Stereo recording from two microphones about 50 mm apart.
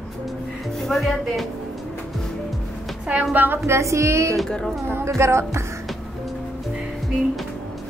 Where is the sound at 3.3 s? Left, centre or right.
Right.